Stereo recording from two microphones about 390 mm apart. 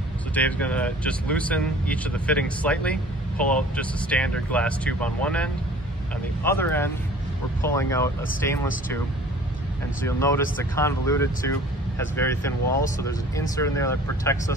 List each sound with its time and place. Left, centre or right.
0.3 s speech: centre
10.0 s speech: centre